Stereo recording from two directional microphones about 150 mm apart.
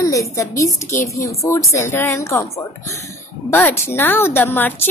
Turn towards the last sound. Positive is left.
turn(degrees=15)  # may be behind; listen again after turning